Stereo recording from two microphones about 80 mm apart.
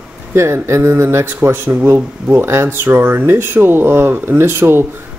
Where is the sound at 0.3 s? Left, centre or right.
Right.